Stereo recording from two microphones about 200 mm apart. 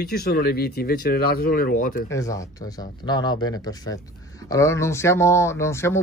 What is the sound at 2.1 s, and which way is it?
A man's voice, 15° left (ahead or behind).